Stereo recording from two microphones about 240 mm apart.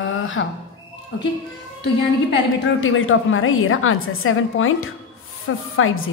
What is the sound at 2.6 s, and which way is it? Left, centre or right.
A woman's voice, left.